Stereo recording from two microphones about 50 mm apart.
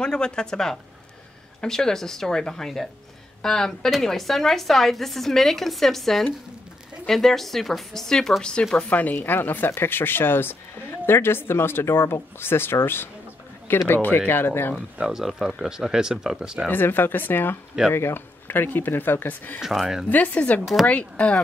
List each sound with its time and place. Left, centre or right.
0.0 s a woman's voice: centre
8.8 s speech: left
15.0 s speech: centre
16.7 s speech: left
19.6 s speech: centre
20.1 s speech: left